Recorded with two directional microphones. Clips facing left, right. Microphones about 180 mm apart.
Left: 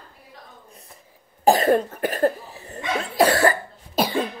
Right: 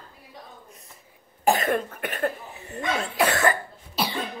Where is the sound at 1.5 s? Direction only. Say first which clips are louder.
Left 5 dB; 35° left (ahead or behind).